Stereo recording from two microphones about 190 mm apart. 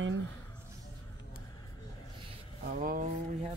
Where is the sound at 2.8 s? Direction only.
45° right (ahead or behind).